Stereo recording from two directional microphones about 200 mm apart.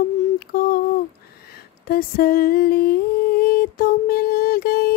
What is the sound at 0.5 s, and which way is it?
Speech, 50° left (ahead or behind).